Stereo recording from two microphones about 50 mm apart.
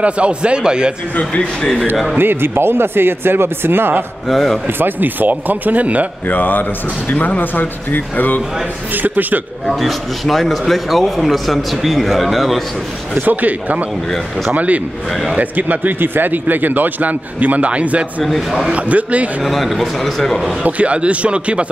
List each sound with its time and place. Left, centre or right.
0.0 s speech: right
1.1 s speech: left
2.1 s speech: right
4.3 s speech: centre
4.6 s speech: right
6.2 s speech: left
8.9 s speech: right
9.7 s speech: centre
13.2 s speech: right
18.2 s speech: centre
18.7 s speech: right
19.4 s speech: centre
20.6 s speech: right